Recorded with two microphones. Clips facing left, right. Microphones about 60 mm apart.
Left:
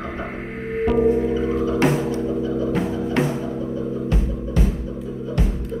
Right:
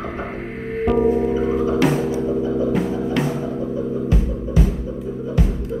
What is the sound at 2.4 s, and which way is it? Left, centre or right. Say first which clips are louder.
Music: right 2 dB; right.